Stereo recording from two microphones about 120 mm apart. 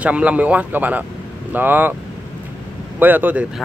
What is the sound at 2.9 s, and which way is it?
Speech, 15° right (ahead or behind).